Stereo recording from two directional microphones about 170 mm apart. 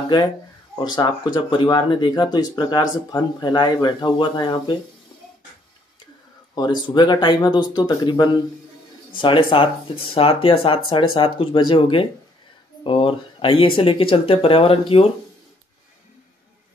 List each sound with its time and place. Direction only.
0.7 s speech: 25° left (ahead or behind)
6.5 s speech: 25° left (ahead or behind)